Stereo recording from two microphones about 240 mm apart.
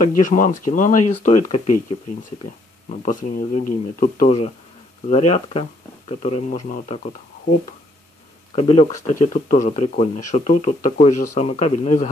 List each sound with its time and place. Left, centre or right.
0.2 s speech: left
2.9 s speech: left
8.5 s speech: left